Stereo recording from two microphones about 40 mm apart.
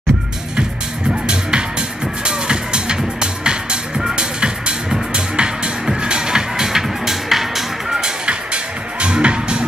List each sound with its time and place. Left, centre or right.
1.2 s music: centre
9.0 s music: right